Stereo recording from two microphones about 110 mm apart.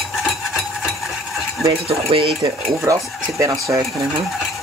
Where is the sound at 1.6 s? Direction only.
65° right (ahead or behind).